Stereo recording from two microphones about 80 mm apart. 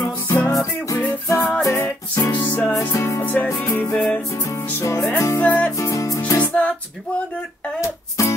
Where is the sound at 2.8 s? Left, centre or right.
Left.